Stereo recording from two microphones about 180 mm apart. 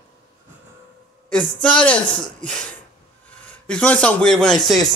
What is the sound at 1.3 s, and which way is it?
Speech, 5° left (ahead or behind).